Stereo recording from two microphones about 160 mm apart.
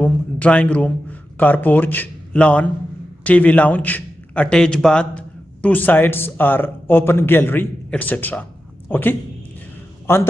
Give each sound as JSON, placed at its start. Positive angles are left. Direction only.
{"t": 0.0, "sound": "a man's voice", "side_deg": 10}